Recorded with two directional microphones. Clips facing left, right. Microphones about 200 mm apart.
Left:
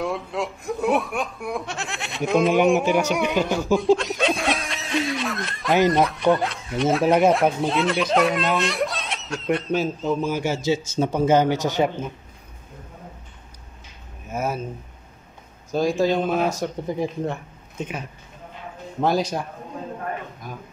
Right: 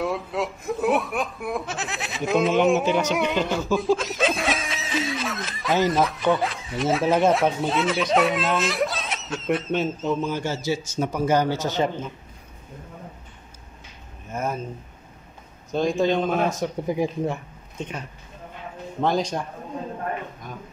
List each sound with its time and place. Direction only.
0.0 s speech: centre (ahead or behind)
3.0 s a man's voice: 10° left (ahead or behind)
3.8 s snicker: centre (ahead or behind)
5.9 s speech: centre (ahead or behind)
10.4 s a man's voice: 15° left (ahead or behind)
11.0 s a man's voice: 30° left (ahead or behind); by 12.1 s 10° left (ahead or behind)
14.3 s speech: 5° left (ahead or behind)
15.7 s speech: 5° left (ahead or behind)
17.7 s speech: 5° left (ahead or behind)
19.0 s a man's voice: 5° left (ahead or behind)
20.4 s speech: 5° left (ahead or behind)